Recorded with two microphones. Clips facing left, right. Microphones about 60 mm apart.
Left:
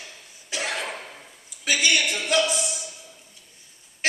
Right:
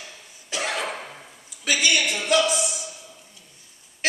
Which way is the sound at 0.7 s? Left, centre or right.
Right.